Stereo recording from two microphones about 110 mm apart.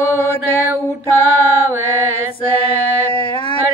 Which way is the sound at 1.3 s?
15° left (ahead or behind).